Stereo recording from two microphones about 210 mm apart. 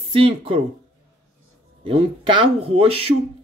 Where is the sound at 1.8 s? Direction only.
25° right (ahead or behind).